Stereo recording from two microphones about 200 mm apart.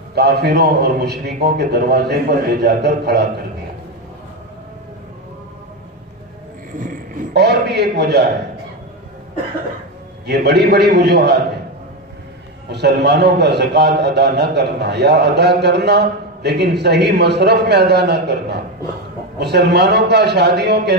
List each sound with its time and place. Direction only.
0.1 s a man's voice: 55° right (ahead or behind)
6.8 s a man's voice: 50° right (ahead or behind)
10.2 s a man's voice: 55° right (ahead or behind)
12.7 s a man's voice: 55° right (ahead or behind)